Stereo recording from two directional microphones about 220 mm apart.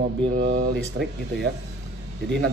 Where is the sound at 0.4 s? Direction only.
50° right (ahead or behind).